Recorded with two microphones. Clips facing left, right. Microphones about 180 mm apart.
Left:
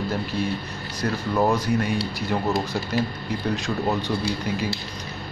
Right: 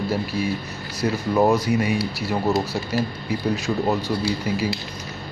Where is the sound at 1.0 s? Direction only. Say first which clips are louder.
Right 3 dB; 10° right (ahead or behind).